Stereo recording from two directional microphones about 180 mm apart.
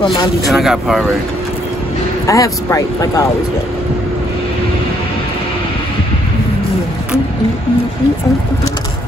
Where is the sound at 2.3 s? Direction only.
15° left (ahead or behind).